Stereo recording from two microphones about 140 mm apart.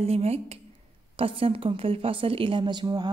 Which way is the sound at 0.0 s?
45° right (ahead or behind).